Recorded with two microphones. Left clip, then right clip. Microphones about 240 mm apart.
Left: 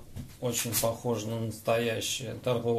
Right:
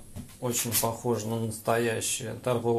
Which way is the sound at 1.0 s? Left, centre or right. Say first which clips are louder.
Right 2 dB; centre.